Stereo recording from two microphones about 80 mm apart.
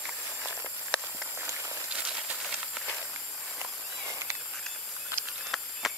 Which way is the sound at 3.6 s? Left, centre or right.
Right.